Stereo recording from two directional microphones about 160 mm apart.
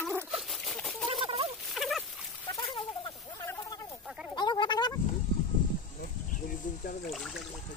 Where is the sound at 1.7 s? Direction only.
Centre (ahead or behind).